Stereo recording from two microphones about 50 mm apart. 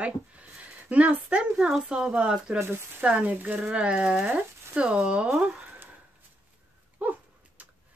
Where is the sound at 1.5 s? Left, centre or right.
Centre.